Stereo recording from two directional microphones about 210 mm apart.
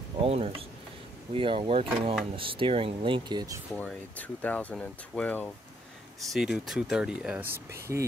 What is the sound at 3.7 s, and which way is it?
Speech, 5° left (ahead or behind).